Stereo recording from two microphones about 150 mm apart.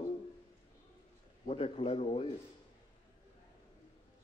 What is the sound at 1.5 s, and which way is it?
Speech, 40° left (ahead or behind).